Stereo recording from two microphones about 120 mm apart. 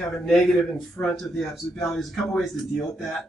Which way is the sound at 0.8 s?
Centre (ahead or behind).